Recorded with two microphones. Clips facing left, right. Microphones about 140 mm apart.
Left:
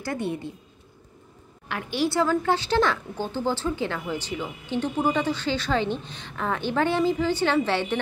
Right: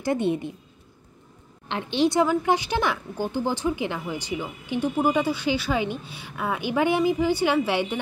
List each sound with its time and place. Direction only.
0.0 s a woman's voice: 20° right (ahead or behind)
1.7 s a woman's voice: 20° right (ahead or behind)